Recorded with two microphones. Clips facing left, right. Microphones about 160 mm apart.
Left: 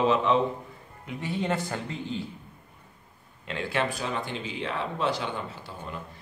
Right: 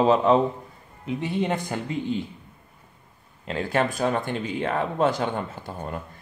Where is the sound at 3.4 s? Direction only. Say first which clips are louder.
Right 4 dB; 40° right (ahead or behind).